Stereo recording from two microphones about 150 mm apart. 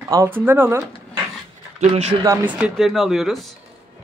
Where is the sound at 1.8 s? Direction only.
45° right (ahead or behind).